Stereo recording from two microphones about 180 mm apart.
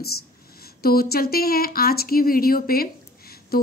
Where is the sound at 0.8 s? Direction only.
55° left (ahead or behind).